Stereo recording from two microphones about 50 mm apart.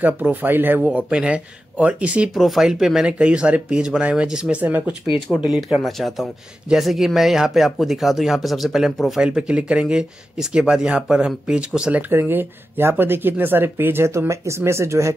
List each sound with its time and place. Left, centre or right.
0.0 s speech: right
0.8 s speech: right
2.3 s speech: centre
3.2 s speech: right
4.6 s speech: right
5.3 s speech: left
5.8 s speech: centre
9.2 s speech: centre
12.1 s speech: right
14.0 s speech: right